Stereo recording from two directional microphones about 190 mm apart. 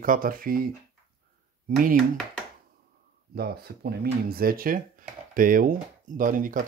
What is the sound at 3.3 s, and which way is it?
Speech, 55° right (ahead or behind).